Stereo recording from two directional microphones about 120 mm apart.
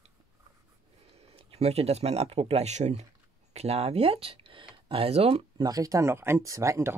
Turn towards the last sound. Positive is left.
turn(degrees=-25)  # may be behind; listen again after turning